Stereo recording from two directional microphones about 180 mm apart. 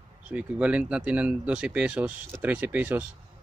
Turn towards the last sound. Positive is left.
turn(degrees=-10)  # may be behind; listen again after turning